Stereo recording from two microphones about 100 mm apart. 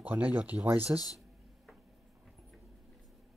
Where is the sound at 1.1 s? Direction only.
Centre (ahead or behind).